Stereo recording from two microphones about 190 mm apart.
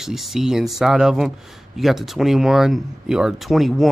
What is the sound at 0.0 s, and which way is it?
Speech, centre (ahead or behind).